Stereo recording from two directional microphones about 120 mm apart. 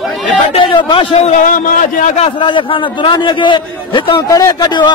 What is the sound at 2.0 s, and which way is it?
Speech, 80° left.